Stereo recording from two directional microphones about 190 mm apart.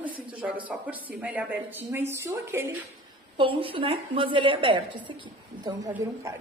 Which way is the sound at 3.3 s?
25° right (ahead or behind).